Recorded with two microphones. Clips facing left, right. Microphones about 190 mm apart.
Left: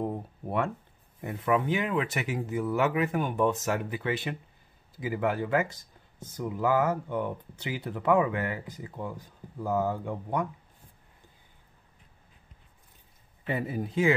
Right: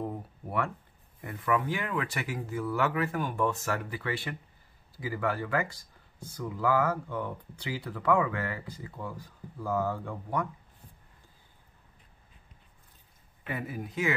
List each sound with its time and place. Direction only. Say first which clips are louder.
0.0 s a sound: left 4 dB; 20° left (ahead or behind)
1.2 s speech: left 3 dB; 25° left (ahead or behind)
13.5 s speech: left 5 dB; 30° left (ahead or behind)